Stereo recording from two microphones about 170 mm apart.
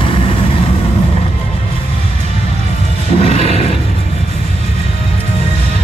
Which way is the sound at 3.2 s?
35° left (ahead or behind).